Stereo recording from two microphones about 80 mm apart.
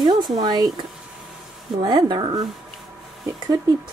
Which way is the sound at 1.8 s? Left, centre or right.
Right.